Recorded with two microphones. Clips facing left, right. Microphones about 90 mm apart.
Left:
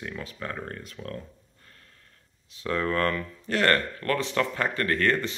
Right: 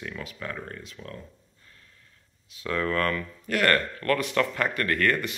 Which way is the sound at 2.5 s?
30° left (ahead or behind).